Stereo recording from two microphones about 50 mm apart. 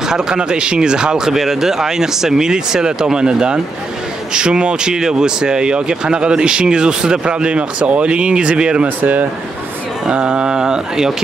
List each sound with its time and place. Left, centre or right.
0.0 s speech: centre
8.8 s speech: right
10.0 s speech: centre